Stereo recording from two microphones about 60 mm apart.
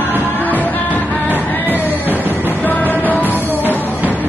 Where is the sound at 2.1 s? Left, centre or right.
Right.